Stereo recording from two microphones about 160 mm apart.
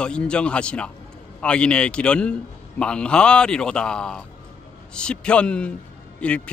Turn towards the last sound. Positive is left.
turn(degrees=5)  # may be behind; listen again after turning